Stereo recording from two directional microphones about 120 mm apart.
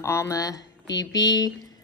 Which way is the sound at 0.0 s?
25° left (ahead or behind).